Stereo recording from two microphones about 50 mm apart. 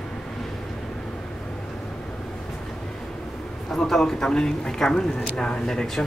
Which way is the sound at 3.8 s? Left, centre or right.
Centre.